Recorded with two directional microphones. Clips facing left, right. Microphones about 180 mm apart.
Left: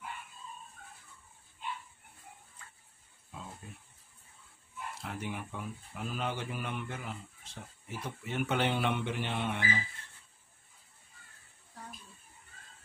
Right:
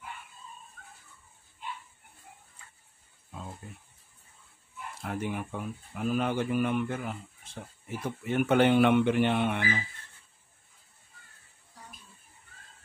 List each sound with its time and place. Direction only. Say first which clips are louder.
5.0 s speech: right 7 dB; 50° right (ahead or behind)
8.3 s speech: right 9 dB; 55° right (ahead or behind)